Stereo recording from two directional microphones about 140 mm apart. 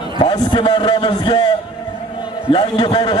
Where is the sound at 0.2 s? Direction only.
35° left (ahead or behind).